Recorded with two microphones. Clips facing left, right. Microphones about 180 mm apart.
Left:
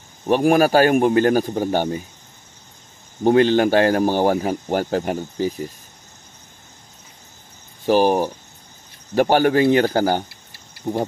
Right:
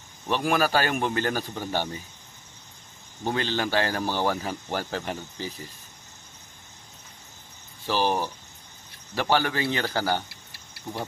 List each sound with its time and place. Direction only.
0.3 s speech: 45° left (ahead or behind)
3.3 s speech: 50° left (ahead or behind)
7.8 s speech: 50° left (ahead or behind)
10.9 s speech: 35° left (ahead or behind)